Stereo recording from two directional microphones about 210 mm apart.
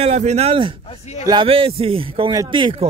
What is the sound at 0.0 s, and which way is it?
A man's voice, 30° right (ahead or behind).